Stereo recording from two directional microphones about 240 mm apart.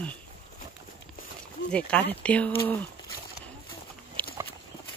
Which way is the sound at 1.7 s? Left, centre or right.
Centre.